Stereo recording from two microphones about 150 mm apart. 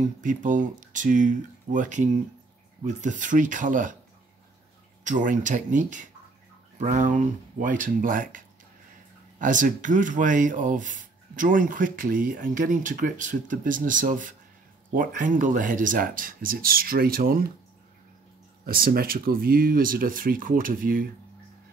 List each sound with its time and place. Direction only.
0.2 s speech: 60° right (ahead or behind)
5.0 s speech: 60° right (ahead or behind); by 17.5 s 75° right (ahead or behind)
18.7 s speech: 80° right